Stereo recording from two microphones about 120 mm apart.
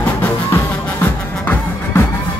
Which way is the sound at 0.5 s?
20° left (ahead or behind).